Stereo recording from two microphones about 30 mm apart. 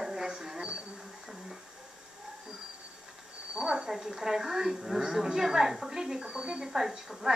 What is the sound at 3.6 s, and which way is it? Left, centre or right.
A woman's voice, right.